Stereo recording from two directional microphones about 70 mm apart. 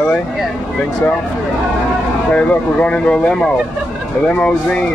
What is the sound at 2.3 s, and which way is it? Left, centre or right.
Speech, centre.